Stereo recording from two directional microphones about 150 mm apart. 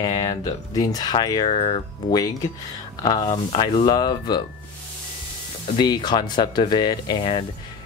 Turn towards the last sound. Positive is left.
turn(degrees=30)  # may be behind; listen again after turning